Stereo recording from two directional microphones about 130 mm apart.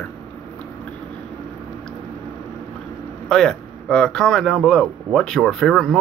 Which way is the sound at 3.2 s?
5° left (ahead or behind).